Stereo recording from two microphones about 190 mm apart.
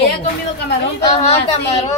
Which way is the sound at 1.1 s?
35° left (ahead or behind).